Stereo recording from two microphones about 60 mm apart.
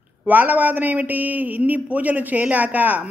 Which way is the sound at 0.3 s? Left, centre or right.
Right.